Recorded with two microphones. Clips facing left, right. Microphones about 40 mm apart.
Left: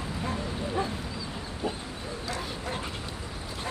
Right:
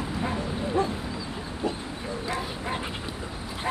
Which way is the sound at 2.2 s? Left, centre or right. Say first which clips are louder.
Right 3 dB; right.